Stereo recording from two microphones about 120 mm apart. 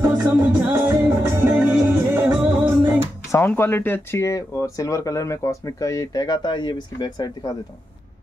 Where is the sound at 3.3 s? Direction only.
20° left (ahead or behind); by 7.2 s 40° left (ahead or behind).